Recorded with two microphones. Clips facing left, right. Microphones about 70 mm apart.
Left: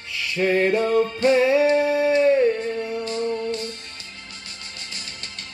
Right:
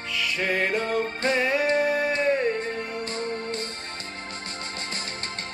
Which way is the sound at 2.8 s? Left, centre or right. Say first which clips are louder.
Left 5 dB; right.